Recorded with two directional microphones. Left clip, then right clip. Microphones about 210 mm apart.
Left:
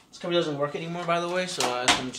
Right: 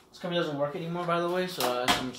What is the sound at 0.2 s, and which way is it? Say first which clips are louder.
Speech: left 3 dB; 10° left (ahead or behind).